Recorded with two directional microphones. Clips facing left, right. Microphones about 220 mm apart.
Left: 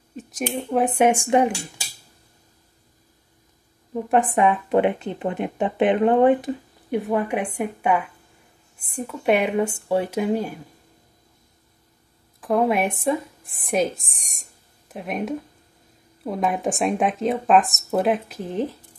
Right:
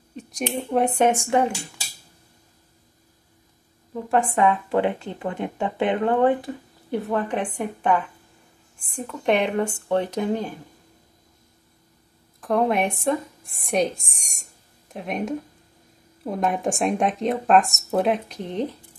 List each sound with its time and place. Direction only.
0.1 s a sound: 5° left (ahead or behind)
0.6 s speech: centre (ahead or behind)
3.9 s speech: 15° left (ahead or behind)
12.4 s a woman's voice: 5° left (ahead or behind)